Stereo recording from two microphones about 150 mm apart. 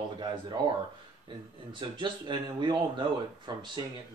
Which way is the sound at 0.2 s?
30° right (ahead or behind).